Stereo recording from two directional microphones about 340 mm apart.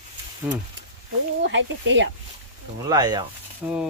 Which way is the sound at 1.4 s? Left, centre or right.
Right.